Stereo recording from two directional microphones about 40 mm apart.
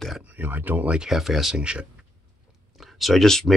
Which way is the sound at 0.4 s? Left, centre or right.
Right.